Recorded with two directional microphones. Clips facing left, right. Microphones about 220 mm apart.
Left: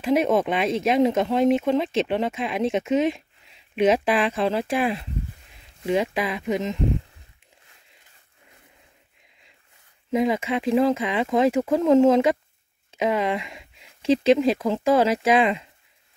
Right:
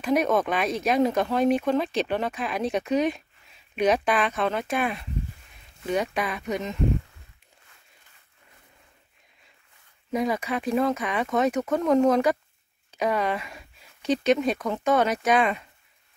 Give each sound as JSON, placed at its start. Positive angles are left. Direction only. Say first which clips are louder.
{"t": 0.0, "sound": "speech", "louder": "left 2 dB", "side_deg": 25}
{"t": 10.1, "sound": "speech", "louder": "left 4 dB", "side_deg": 25}